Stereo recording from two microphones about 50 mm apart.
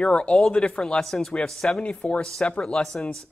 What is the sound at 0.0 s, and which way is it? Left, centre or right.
Speech, left.